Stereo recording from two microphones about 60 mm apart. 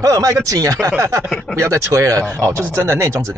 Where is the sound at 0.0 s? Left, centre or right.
Right.